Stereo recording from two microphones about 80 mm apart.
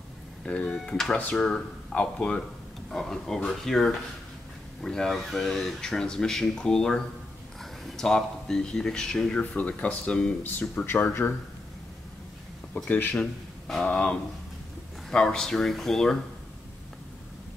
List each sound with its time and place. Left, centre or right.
0.5 s speech: centre
12.7 s speech: left
13.1 s a man's voice: centre